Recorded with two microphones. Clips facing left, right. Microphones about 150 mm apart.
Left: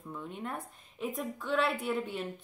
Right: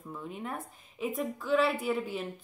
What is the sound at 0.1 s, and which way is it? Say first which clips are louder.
A woman's voice: right 1 dB; 5° right (ahead or behind).